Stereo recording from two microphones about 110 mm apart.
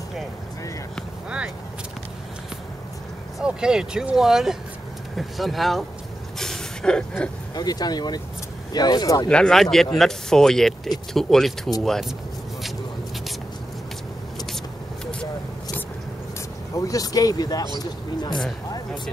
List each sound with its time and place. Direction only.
3.3 s speech: 5° right (ahead or behind)
6.3 s vehicle: 5° left (ahead or behind)
7.5 s speech: 35° left (ahead or behind)
9.3 s speech: 5° left (ahead or behind)
16.7 s speech: 30° left (ahead or behind)